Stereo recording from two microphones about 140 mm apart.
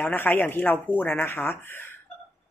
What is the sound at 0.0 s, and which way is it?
A woman's voice, 15° left (ahead or behind).